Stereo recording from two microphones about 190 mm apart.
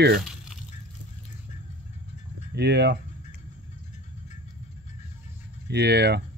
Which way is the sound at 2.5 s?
60° right (ahead or behind).